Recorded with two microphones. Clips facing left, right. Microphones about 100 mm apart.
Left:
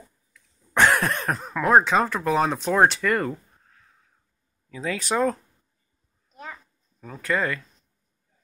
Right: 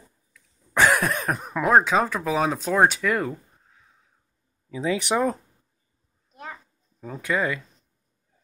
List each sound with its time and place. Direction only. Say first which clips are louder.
0.3 s cough: left 1 dB; 5° right (ahead or behind)
1.7 s speech: left 1 dB; centre (ahead or behind)
6.4 s a sound: right 1 dB; 15° right (ahead or behind)